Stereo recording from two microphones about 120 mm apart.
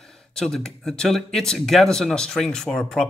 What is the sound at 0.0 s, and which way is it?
Speech, 5° left (ahead or behind).